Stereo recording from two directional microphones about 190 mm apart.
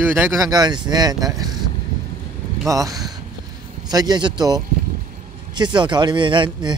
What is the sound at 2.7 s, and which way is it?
A man's voice, 20° right (ahead or behind).